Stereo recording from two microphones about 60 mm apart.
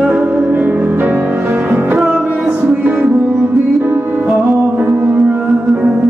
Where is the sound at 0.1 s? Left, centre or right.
Right.